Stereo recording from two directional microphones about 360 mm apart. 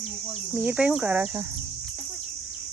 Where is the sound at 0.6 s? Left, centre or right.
Centre.